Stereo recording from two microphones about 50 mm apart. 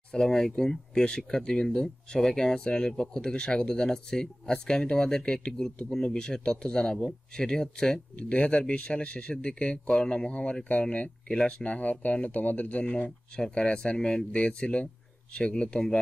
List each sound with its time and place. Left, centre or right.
0.1 s speech: centre
8.2 s speech: left
13.4 s speech: centre